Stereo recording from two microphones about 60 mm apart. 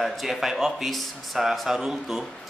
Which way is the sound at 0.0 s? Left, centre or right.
Centre.